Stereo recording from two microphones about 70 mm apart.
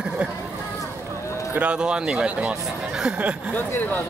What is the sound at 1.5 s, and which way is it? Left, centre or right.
Speech, centre.